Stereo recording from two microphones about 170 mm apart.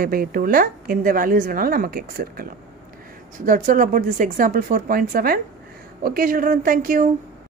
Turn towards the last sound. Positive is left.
turn(degrees=-55)  # may be behind; listen again after turning